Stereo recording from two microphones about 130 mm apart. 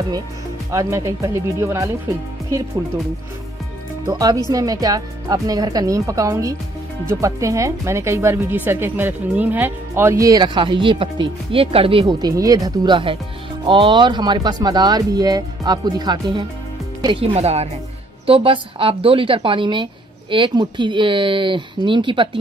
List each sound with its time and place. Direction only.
0.7 s speech: 20° right (ahead or behind)
4.0 s speech: 30° right (ahead or behind)
12.2 s a woman's voice: 30° right (ahead or behind)
17.3 s speech: 55° right (ahead or behind)
18.2 s a woman's voice: 45° right (ahead or behind)